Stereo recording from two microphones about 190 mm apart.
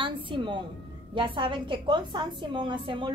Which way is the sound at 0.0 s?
25° right (ahead or behind).